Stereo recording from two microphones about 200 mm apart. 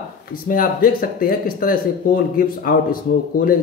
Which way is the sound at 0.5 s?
45° left (ahead or behind).